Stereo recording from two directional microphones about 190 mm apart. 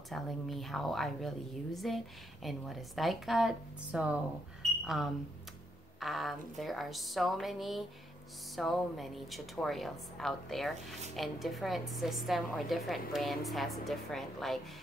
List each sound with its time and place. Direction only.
0.1 s speech: centre (ahead or behind)